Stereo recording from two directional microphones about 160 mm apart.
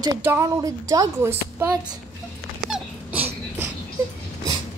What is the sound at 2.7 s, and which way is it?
Dog, 10° right (ahead or behind).